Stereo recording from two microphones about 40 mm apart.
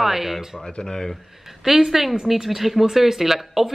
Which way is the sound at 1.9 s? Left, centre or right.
Centre.